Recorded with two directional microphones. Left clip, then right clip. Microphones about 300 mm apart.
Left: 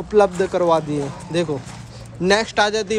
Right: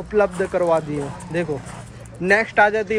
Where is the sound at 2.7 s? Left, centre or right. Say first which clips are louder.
Even; centre.